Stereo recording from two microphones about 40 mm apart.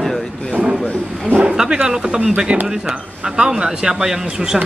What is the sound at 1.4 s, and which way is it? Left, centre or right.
Speech, centre.